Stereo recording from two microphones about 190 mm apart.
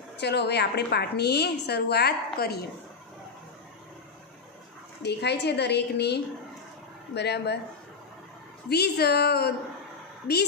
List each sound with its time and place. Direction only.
0.2 s a woman's voice: 60° left (ahead or behind)
5.0 s a woman's voice: 60° left (ahead or behind)
8.6 s a woman's voice: 60° left (ahead or behind)